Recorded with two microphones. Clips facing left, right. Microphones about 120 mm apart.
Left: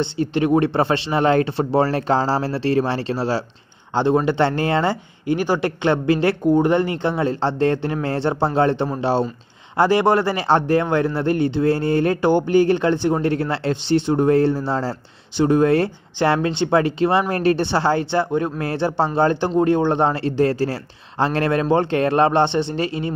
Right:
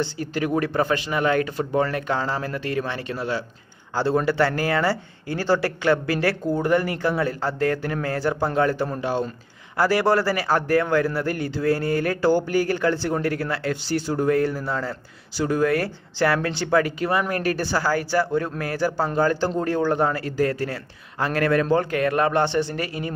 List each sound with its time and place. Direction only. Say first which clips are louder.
0.0 s speech: left 5 dB; 25° left (ahead or behind)
3.9 s a man's voice: left 4 dB; 20° left (ahead or behind)